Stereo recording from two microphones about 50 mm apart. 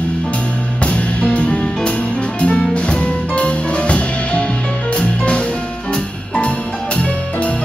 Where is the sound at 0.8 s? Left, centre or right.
Left.